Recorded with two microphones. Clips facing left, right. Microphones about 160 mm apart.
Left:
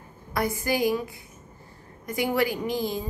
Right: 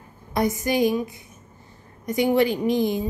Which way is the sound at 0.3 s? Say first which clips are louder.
Right 4 dB; 20° right (ahead or behind).